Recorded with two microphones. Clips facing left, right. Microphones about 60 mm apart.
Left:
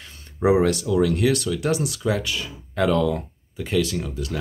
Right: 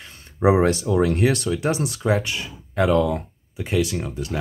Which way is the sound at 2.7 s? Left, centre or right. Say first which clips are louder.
Right 1 dB; centre.